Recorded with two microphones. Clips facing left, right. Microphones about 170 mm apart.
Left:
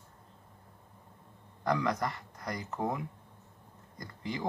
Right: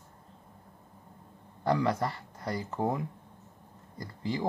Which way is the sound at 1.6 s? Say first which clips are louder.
Right 3 dB; 30° right (ahead or behind).